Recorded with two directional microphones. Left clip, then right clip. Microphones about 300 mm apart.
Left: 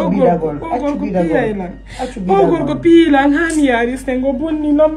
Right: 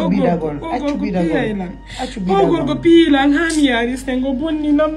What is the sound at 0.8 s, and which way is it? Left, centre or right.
A woman's voice, centre.